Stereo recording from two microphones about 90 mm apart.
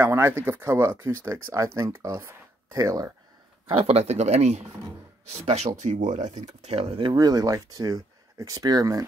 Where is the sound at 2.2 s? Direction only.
30° right (ahead or behind).